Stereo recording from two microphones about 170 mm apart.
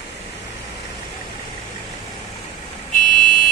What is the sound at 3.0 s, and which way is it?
Vehicle, 55° left (ahead or behind).